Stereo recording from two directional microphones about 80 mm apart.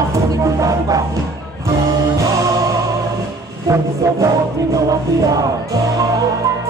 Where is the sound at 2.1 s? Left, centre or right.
Right.